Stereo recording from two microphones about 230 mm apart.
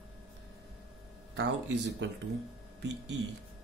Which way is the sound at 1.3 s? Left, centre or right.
Right.